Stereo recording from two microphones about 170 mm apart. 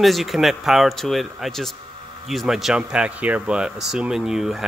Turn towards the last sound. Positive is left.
turn(degrees=0)  # may be behind; listen again after turning